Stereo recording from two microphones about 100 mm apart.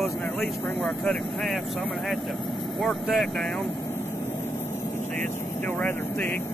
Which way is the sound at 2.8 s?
5° left (ahead or behind).